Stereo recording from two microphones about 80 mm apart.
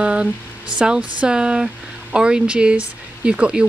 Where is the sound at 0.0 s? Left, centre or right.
Centre.